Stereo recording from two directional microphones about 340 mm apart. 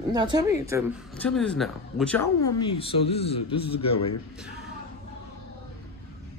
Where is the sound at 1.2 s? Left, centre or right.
Centre.